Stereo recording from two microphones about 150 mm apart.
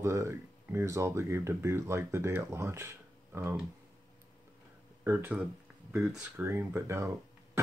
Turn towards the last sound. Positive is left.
turn(degrees=-20)  # may be behind; listen again after turning